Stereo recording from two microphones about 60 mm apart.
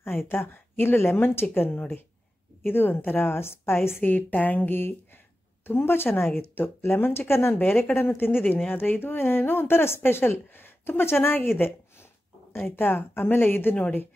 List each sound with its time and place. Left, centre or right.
0.3 s a woman's voice: left
4.0 s a woman's voice: left
12.5 s a woman's voice: left